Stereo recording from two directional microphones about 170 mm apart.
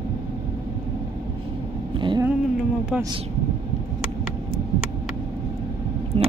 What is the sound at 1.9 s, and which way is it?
Cat, 30° right (ahead or behind).